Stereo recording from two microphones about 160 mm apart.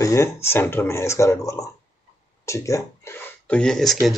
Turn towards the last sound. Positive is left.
turn(degrees=0)  # may be behind; listen again after turning